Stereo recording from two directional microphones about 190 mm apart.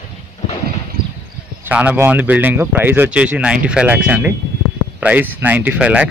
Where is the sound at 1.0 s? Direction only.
55° right (ahead or behind).